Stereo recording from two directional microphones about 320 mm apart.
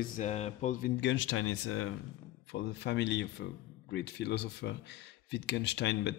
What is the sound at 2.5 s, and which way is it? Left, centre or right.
Speech, left.